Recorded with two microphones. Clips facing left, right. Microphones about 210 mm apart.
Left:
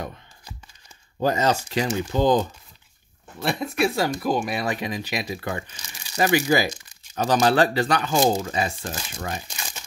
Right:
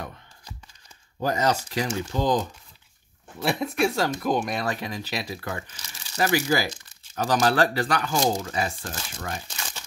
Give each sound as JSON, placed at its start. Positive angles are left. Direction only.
{"t": 1.2, "sound": "speech", "side_deg": 25}
{"t": 3.3, "sound": "speech", "side_deg": 0}